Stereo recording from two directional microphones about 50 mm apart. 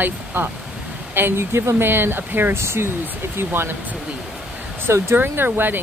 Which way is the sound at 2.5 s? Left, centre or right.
Right.